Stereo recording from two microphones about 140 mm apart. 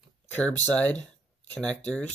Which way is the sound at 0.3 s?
10° left (ahead or behind).